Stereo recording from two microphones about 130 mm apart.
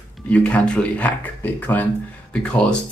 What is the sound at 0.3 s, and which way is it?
Speech, 10° left (ahead or behind).